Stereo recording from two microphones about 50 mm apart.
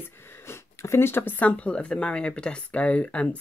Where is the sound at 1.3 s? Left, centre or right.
Left.